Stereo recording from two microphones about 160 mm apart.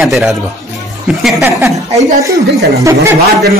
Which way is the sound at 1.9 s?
45° right (ahead or behind).